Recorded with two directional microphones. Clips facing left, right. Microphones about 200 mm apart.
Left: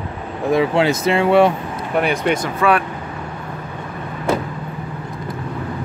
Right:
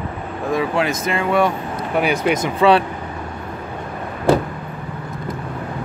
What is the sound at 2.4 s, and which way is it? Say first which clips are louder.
Speech: right 3 dB; 25° right (ahead or behind).